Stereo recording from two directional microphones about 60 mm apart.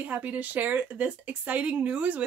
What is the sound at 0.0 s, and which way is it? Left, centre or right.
Speech, right.